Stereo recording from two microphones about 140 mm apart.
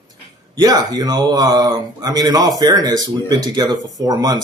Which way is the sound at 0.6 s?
25° right (ahead or behind).